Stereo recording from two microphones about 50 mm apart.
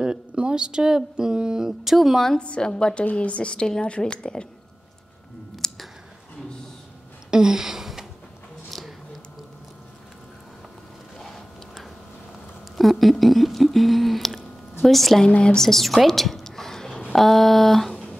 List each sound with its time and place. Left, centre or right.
0.0 s speech: centre
1.7 s speech: centre
2.3 s a woman's voice: centre
5.6 s clicking: centre
7.2 s a sound: centre
11.1 s a sound: centre
12.7 s speech: centre
15.2 s a woman's voice: centre